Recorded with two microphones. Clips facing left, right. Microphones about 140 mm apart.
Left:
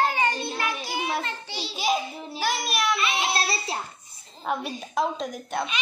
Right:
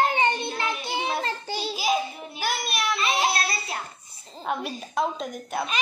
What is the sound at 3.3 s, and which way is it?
Child singing, 30° left (ahead or behind).